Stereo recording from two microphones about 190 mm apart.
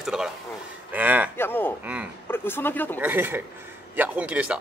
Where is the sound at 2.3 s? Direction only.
10° left (ahead or behind).